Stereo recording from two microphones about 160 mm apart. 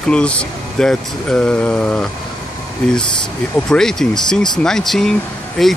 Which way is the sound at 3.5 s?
5° left (ahead or behind).